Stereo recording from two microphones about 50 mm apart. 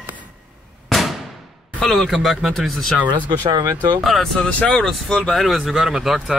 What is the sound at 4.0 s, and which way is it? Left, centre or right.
Speech, centre.